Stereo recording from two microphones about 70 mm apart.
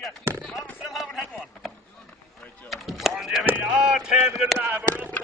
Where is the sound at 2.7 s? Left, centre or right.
Centre.